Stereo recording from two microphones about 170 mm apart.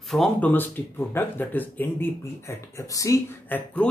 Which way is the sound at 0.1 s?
5° left (ahead or behind).